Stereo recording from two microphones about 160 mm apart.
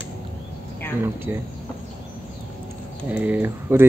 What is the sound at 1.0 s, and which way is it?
Speech, 15° right (ahead or behind).